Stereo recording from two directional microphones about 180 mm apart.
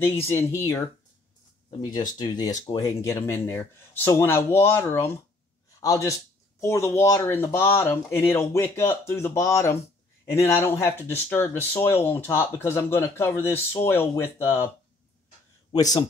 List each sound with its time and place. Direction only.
0.0 s speech: 15° left (ahead or behind)
1.8 s a man's voice: 25° left (ahead or behind)
15.7 s speech: 20° left (ahead or behind)